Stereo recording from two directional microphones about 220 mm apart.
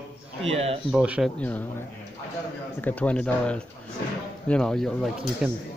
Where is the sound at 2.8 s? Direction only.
5° left (ahead or behind).